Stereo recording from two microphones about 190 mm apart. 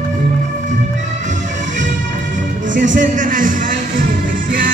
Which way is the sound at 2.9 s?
40° right (ahead or behind).